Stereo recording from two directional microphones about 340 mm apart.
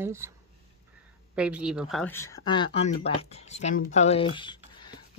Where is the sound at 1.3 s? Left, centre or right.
Centre.